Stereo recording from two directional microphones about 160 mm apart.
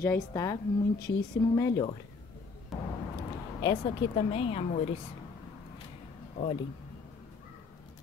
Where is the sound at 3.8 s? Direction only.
35° left (ahead or behind).